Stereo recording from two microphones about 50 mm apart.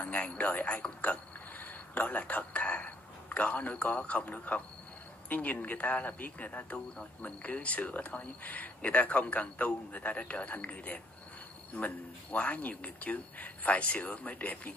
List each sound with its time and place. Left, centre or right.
0.0 s speech: left
1.6 s speech: left